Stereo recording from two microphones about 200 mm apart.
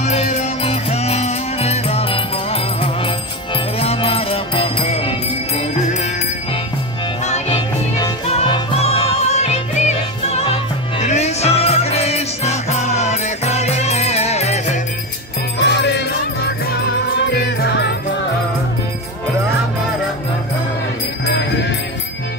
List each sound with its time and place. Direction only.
0.0 s music: 35° left (ahead or behind)
7.2 s music: 35° left (ahead or behind)
15.6 s music: 60° left (ahead or behind)
17.1 s music: 60° left (ahead or behind)